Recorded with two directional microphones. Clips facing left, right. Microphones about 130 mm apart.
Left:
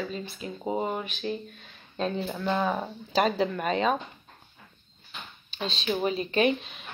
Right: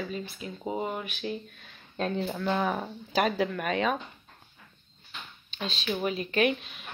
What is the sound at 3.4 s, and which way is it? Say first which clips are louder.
Speech: left 2 dB; 25° left (ahead or behind).